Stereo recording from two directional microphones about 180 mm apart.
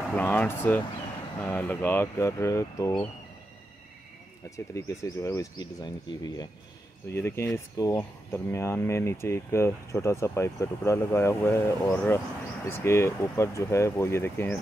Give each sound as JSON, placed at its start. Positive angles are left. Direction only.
{"t": 0.1, "sound": "speech", "side_deg": 10}
{"t": 4.7, "sound": "speech", "side_deg": 20}